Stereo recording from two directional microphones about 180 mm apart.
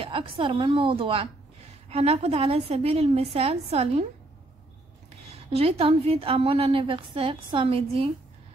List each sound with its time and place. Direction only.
0.0 s a woman's voice: 30° right (ahead or behind)
5.5 s a woman's voice: 35° right (ahead or behind)